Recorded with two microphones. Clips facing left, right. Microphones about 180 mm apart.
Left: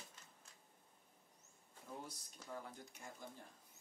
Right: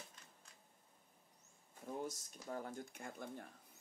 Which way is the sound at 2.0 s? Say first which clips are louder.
Right 8 dB; 45° right (ahead or behind).